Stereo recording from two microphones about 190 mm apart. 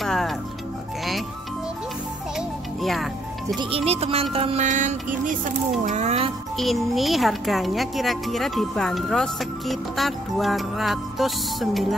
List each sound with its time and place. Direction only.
0.0 s music: centre (ahead or behind)
2.3 s music: centre (ahead or behind)
3.5 s music: 30° right (ahead or behind)
6.6 s speech: centre (ahead or behind)